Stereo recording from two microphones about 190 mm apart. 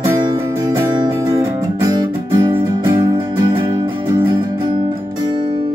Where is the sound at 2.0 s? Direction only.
25° right (ahead or behind).